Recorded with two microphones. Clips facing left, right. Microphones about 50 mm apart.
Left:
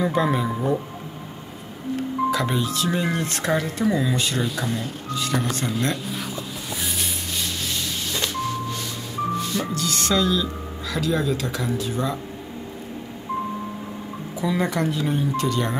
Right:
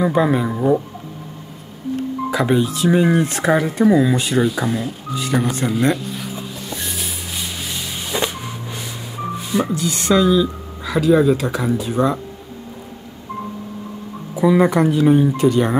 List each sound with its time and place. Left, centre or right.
0.0 s speech: centre
2.3 s speech: centre
6.7 s music: centre
7.4 s a sound: centre
9.4 s speech: centre
14.4 s speech: centre